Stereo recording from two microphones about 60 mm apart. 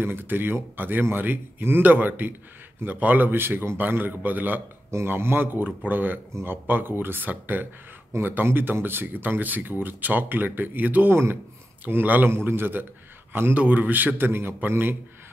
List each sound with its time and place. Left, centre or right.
0.0 s speech: right
4.9 s speech: right